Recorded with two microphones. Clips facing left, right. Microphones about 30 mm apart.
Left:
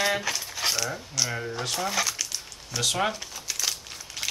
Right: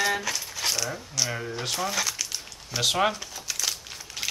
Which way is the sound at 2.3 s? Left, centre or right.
Centre.